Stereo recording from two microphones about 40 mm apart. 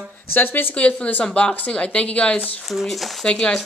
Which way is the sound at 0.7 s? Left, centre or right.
Left.